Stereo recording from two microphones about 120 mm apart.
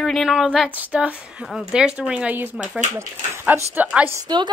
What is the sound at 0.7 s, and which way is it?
Speech, 10° right (ahead or behind).